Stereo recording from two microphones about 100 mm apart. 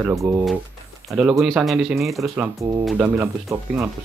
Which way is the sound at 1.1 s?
5° right (ahead or behind).